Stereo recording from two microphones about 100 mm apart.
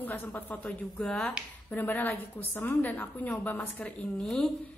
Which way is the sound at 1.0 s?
5° left (ahead or behind).